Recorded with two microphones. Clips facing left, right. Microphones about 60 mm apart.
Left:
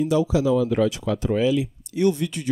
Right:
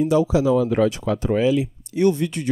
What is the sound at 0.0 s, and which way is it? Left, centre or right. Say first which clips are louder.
Speech: right 2 dB; right.